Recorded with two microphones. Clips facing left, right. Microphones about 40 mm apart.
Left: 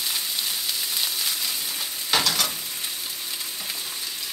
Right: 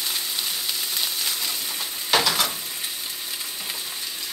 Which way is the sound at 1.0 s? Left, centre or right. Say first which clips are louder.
Even; centre.